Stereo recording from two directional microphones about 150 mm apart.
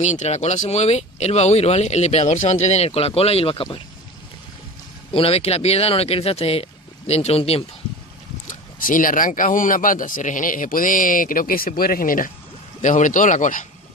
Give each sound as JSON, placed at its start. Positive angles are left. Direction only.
{"t": 0.0, "sound": "speech", "side_deg": 50}
{"t": 5.1, "sound": "speech", "side_deg": 40}
{"t": 8.5, "sound": "speech", "side_deg": 65}
{"t": 12.8, "sound": "speech", "side_deg": 60}